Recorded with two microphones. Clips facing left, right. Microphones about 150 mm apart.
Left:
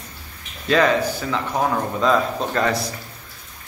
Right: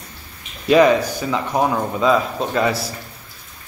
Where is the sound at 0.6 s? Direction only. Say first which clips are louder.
Right 5 dB; 15° right (ahead or behind).